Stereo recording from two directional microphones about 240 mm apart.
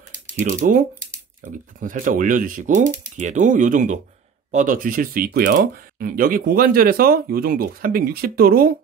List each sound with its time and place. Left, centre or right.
0.4 s speech: right